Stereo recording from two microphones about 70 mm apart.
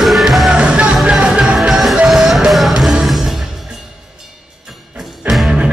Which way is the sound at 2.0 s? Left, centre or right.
Centre.